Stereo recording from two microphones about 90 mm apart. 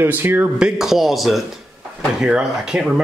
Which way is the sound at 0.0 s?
25° right (ahead or behind).